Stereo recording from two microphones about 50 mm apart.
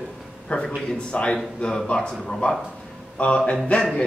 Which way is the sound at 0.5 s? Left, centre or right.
Left.